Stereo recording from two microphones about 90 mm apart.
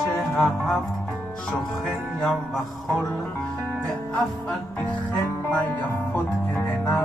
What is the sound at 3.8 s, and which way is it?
Music, 10° left (ahead or behind).